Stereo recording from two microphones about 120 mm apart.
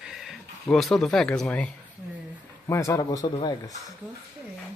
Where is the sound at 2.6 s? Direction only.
25° left (ahead or behind).